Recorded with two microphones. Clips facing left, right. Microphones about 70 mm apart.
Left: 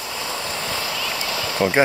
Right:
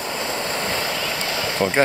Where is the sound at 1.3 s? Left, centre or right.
Right.